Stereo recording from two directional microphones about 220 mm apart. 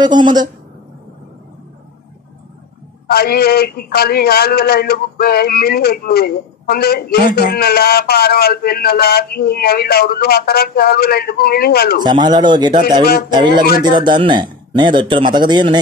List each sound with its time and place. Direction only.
0.0 s speech: 20° right (ahead or behind)
3.1 s a man's voice: 45° left (ahead or behind)
12.0 s speech: 20° right (ahead or behind)
13.8 s speech: 20° right (ahead or behind)